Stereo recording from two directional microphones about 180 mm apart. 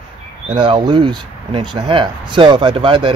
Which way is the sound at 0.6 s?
30° right (ahead or behind).